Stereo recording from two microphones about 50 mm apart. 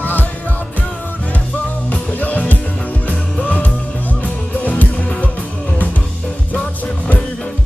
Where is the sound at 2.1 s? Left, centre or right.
Left.